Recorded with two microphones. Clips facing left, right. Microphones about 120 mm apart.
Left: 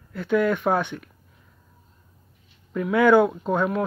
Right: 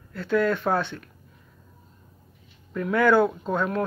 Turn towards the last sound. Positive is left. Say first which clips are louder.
# left 2 dB
turn(degrees=10)  # may be behind; listen again after turning